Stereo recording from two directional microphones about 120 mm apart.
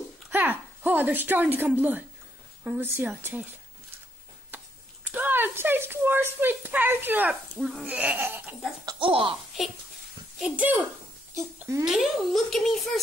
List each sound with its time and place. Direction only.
0.3 s speech: 15° right (ahead or behind)
5.0 s speech: 15° right (ahead or behind)
8.8 s speech: 45° right (ahead or behind)
10.4 s speech: 10° right (ahead or behind)
11.8 s a child's voice: 5° right (ahead or behind)